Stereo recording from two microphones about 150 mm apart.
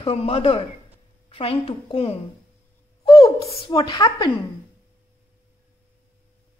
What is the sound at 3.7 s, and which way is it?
Speech, 30° left (ahead or behind).